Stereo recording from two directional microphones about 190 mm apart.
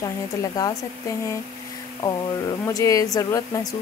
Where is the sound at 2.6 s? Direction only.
15° left (ahead or behind).